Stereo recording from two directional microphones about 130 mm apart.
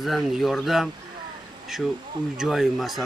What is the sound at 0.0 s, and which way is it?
Speech, centre (ahead or behind).